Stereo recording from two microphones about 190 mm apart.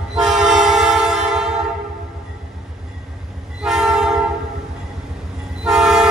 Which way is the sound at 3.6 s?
Centre (ahead or behind).